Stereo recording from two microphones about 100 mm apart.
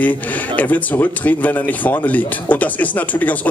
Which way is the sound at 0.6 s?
15° left (ahead or behind).